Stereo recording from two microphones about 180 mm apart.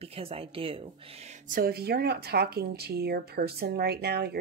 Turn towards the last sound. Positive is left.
turn(degrees=-60)  # may be behind; listen again after turning